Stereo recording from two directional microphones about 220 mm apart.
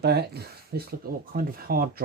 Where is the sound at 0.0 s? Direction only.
45° right (ahead or behind).